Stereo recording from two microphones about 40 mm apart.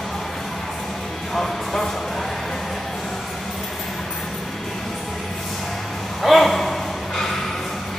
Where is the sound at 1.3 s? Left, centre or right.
Centre.